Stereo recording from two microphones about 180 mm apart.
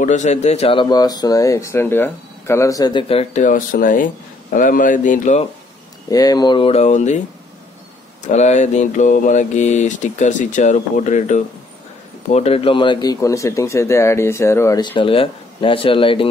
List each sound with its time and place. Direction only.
0.0 s speech: 40° left (ahead or behind)
6.0 s speech: 20° left (ahead or behind); by 7.2 s 40° left (ahead or behind)
8.2 s speech: 40° left (ahead or behind)